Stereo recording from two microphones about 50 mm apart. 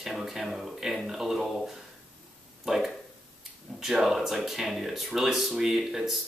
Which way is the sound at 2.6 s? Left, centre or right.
Centre.